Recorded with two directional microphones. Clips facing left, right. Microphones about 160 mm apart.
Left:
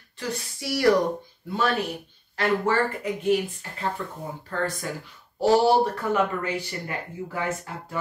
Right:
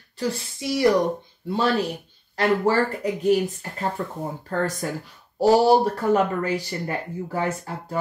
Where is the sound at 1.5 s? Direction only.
30° right (ahead or behind).